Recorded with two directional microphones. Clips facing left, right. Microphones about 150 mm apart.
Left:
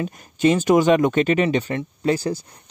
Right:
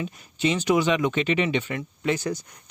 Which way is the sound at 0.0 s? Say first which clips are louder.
Left 7 dB; 45° left (ahead or behind).